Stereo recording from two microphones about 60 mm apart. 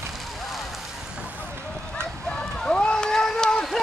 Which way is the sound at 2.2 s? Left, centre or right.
Centre.